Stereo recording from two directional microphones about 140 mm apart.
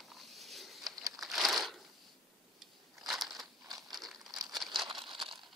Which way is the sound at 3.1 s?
Centre (ahead or behind).